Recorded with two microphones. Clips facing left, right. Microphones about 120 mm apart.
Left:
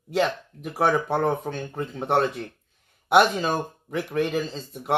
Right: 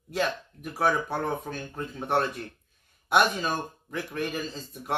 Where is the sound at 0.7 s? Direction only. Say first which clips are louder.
Left 4 dB; 65° left (ahead or behind).